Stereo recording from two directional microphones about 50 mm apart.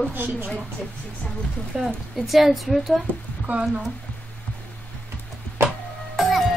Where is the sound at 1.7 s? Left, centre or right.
Centre.